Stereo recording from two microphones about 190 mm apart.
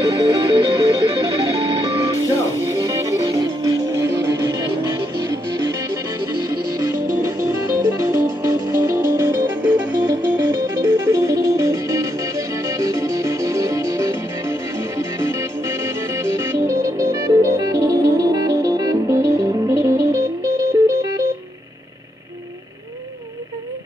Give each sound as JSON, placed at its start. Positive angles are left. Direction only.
{"t": 0.0, "sound": "music", "side_deg": -20}